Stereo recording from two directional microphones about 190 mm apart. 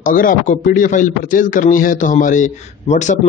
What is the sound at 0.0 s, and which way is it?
A man's voice, 45° left (ahead or behind).